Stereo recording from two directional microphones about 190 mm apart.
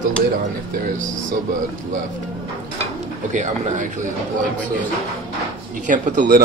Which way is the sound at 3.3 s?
40° right (ahead or behind).